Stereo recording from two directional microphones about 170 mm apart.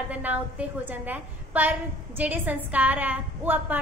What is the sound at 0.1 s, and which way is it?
A woman's voice, 10° right (ahead or behind).